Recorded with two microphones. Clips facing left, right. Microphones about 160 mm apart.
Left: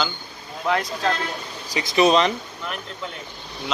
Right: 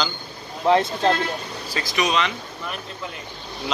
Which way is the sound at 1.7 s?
25° left (ahead or behind).